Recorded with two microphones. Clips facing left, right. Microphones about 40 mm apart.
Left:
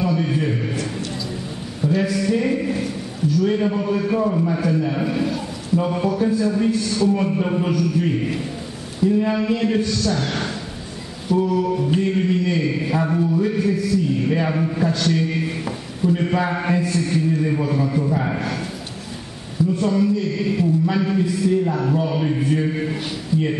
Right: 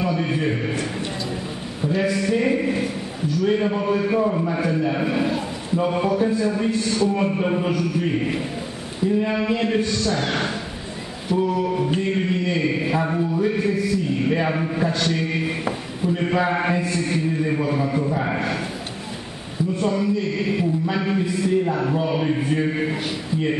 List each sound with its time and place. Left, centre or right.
0.0 s a man's voice: centre
3.4 s mantra: centre
4.6 s a man's voice: centre
5.8 s mantra: centre
9.8 s a man's voice: right
11.4 s mantra: centre
15.0 s a sound: centre
19.8 s a sound: centre
21.6 s mantra: centre
23.3 s speech: right